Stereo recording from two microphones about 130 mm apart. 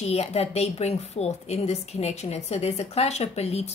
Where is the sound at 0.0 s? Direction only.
55° left (ahead or behind).